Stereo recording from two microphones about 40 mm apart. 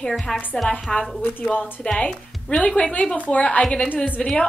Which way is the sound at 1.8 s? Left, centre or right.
Left.